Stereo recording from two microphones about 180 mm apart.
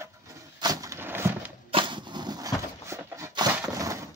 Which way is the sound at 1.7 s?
25° right (ahead or behind).